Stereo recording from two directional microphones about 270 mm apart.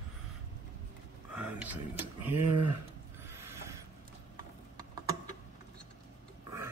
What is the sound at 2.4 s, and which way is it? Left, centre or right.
Speech, right.